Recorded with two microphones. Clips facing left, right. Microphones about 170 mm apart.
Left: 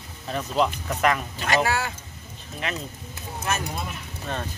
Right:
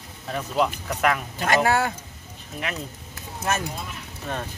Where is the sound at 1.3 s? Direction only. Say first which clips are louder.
Right 3 dB; 50° right (ahead or behind).